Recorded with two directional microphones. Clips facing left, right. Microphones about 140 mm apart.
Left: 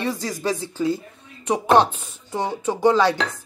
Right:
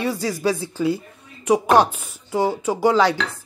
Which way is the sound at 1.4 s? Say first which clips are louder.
Right 1 dB; 10° right (ahead or behind).